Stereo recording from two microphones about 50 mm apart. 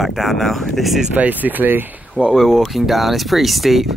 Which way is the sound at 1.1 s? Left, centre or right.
Right.